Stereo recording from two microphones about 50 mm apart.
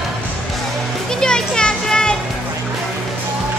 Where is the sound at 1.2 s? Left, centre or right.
Centre.